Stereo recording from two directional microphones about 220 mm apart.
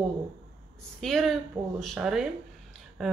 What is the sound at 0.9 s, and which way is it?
Speech, centre (ahead or behind).